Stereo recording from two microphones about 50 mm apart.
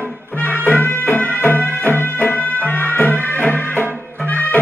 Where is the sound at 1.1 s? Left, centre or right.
Left.